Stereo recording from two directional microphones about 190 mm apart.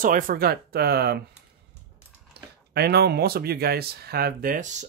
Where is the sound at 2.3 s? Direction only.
60° right (ahead or behind).